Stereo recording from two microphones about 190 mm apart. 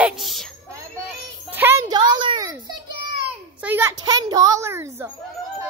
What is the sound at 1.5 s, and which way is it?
Music, 10° right (ahead or behind).